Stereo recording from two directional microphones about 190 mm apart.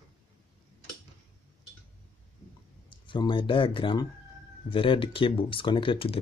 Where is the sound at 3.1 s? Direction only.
25° left (ahead or behind).